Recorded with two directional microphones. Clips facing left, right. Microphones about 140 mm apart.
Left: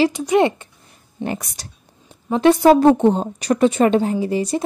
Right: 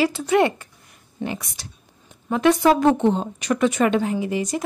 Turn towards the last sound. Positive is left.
turn(degrees=30)  # may be behind; listen again after turning